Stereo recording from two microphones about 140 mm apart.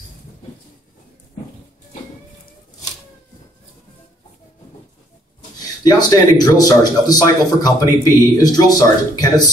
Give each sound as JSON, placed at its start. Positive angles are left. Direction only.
{"t": 5.9, "sound": "a man's voice", "side_deg": 30}